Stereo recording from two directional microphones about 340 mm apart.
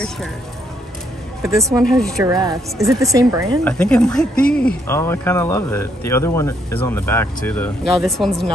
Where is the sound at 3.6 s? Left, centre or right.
Centre.